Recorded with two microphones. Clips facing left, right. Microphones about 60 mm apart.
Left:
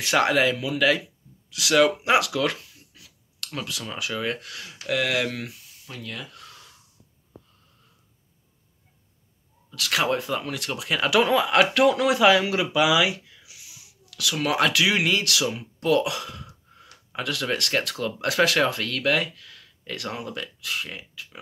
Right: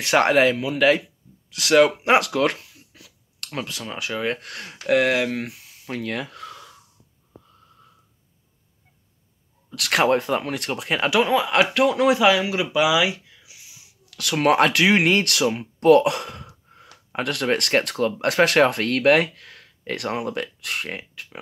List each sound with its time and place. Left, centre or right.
0.0 s speech: right
3.4 s speech: right
4.4 s speech: right
5.5 s speech: right
9.8 s speech: right
10.0 s speech: right
10.7 s speech: right
11.1 s speech: centre
14.1 s speech: right
15.4 s speech: right
16.0 s speech: right
16.4 s speech: right